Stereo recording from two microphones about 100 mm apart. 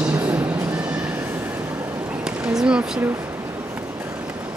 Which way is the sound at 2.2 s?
10° right (ahead or behind).